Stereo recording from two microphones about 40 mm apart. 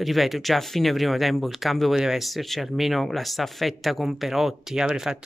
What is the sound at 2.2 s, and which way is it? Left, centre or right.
Speech, centre.